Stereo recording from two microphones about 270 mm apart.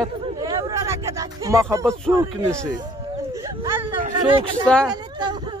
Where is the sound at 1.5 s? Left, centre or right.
Centre.